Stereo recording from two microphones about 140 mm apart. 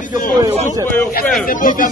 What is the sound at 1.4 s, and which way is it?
Speech, 75° left (ahead or behind).